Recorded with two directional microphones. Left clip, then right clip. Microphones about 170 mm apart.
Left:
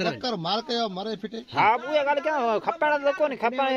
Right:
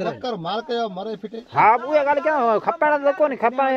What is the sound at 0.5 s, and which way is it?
Speech, 5° right (ahead or behind).